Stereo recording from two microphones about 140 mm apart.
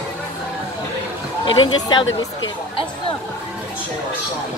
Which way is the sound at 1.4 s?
30° left (ahead or behind).